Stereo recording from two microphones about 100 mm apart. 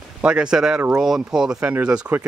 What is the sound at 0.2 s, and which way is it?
Speech, 10° right (ahead or behind).